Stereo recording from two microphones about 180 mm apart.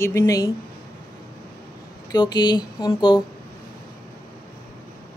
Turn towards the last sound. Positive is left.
turn(degrees=25)  # may be behind; listen again after turning